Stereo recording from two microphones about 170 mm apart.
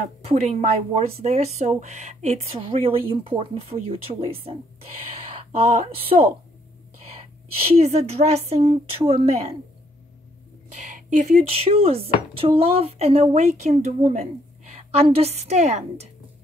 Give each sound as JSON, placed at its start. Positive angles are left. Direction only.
{"t": 0.0, "sound": "speech", "side_deg": -40}
{"t": 5.6, "sound": "speech", "side_deg": -35}
{"t": 7.7, "sound": "speech", "side_deg": -40}
{"t": 11.0, "sound": "speech", "side_deg": -55}
{"t": 11.4, "sound": "a woman's voice", "side_deg": -35}